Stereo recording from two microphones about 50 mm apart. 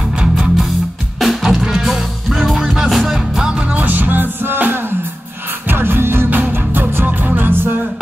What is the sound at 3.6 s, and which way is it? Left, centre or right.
Music, right.